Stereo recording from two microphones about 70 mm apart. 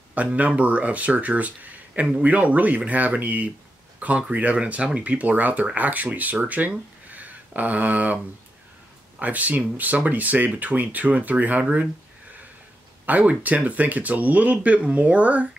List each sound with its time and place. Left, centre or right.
0.1 s speech: right
9.2 s speech: right
13.0 s speech: right